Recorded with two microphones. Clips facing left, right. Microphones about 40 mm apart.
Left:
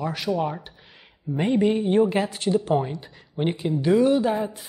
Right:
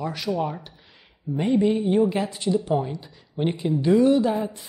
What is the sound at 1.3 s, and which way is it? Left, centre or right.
Speech, left.